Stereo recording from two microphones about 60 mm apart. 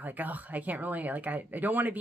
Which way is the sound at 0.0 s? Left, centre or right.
Right.